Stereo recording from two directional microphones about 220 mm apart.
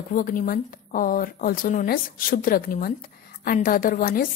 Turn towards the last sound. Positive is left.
turn(degrees=40)  # may be behind; listen again after turning